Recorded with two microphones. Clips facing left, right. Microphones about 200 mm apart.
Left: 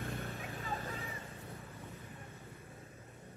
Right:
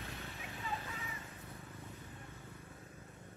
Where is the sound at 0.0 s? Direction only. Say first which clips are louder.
Left 6 dB; 50° left (ahead or behind).